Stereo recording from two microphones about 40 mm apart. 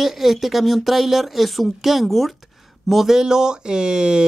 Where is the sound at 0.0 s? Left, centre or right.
Centre.